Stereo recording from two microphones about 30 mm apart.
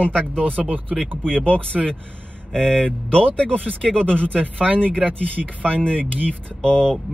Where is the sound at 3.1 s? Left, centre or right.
Left.